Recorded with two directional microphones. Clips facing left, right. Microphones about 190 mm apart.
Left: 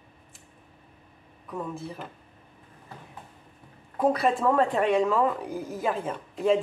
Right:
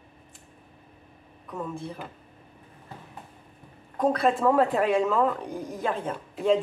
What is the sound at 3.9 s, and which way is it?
Speech, 5° left (ahead or behind).